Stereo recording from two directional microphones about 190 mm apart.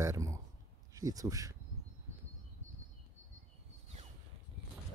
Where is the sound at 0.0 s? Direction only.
15° right (ahead or behind).